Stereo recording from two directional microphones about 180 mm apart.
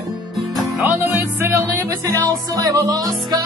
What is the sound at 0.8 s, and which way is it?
Music, 10° right (ahead or behind).